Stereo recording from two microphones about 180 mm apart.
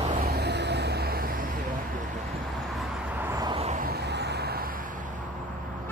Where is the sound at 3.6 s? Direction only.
40° right (ahead or behind).